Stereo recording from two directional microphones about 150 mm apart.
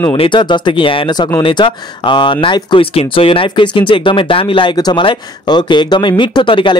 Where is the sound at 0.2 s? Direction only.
30° left (ahead or behind).